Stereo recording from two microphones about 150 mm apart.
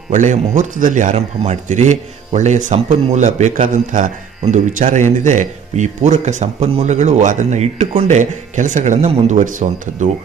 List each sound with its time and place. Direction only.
0.1 s a man's voice: 55° right (ahead or behind)